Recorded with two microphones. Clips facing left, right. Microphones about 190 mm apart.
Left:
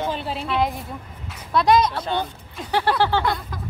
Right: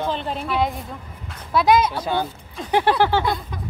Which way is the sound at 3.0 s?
15° right (ahead or behind).